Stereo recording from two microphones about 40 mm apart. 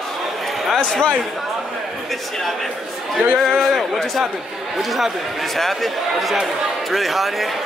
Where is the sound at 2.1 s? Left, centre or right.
Centre.